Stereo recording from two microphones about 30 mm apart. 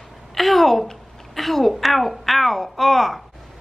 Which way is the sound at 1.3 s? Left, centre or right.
Centre.